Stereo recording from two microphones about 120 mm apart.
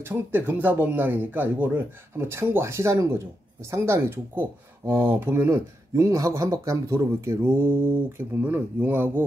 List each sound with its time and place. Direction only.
0.0 s speech: 15° right (ahead or behind)